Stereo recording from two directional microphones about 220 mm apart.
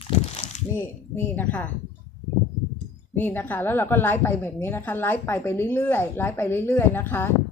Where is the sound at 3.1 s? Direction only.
10° left (ahead or behind).